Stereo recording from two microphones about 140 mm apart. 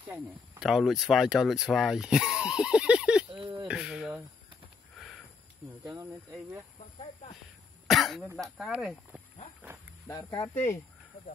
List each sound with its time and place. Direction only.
0.1 s speech: 5° right (ahead or behind)
3.3 s speech: 35° right (ahead or behind)
3.6 s speech: 5° right (ahead or behind)
4.9 s sniff: centre (ahead or behind)
5.7 s speech: 25° right (ahead or behind)
7.9 s speech: centre (ahead or behind)
10.0 s speech: 25° left (ahead or behind)